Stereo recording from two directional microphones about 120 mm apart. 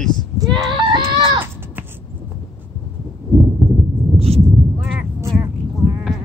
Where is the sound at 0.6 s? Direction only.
40° right (ahead or behind).